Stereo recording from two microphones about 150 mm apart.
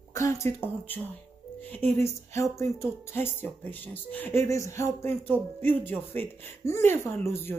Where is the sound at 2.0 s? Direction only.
20° left (ahead or behind).